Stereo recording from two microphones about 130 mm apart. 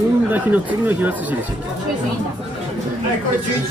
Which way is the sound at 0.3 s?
15° right (ahead or behind).